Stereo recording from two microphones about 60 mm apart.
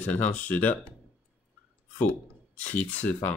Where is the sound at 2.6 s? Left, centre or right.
Left.